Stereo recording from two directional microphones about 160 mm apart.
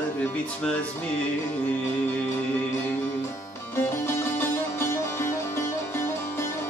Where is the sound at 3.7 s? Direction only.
15° left (ahead or behind).